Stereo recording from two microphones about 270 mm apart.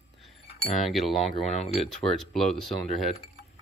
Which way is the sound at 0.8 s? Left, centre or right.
Centre.